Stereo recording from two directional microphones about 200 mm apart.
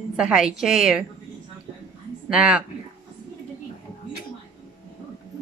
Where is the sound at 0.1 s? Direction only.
5° right (ahead or behind).